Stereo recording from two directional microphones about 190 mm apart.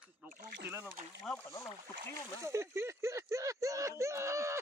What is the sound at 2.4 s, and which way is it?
Speech, 15° right (ahead or behind).